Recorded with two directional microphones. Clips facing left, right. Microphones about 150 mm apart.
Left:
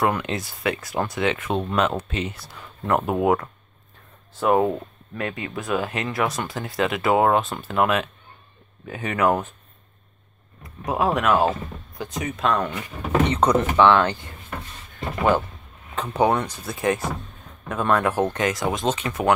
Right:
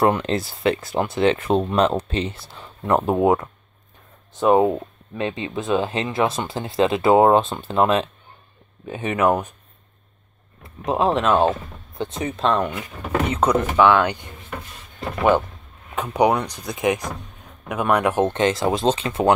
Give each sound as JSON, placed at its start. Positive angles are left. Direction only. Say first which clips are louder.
{"t": 0.0, "sound": "speech", "louder": "right 4 dB", "side_deg": -30}
{"t": 10.9, "sound": "speech", "louder": "right 2 dB", "side_deg": -25}
{"t": 12.7, "sound": "speech", "louder": "left 2 dB", "side_deg": -5}
{"t": 15.9, "sound": "speech", "louder": "right 2 dB", "side_deg": -10}